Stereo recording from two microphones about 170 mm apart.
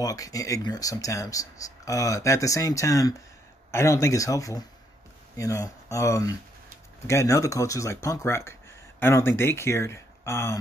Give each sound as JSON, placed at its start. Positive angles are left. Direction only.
{"t": 0.0, "sound": "speech", "side_deg": 20}